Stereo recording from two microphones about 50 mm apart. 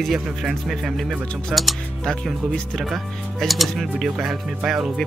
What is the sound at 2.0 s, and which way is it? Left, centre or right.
Speech, centre.